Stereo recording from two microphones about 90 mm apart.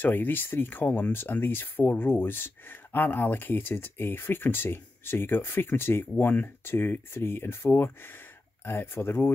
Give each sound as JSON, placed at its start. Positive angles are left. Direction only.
{"t": 0.0, "sound": "speech", "side_deg": 20}